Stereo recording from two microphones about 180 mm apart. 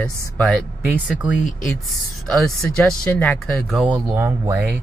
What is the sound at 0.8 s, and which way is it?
Speech, 10° right (ahead or behind).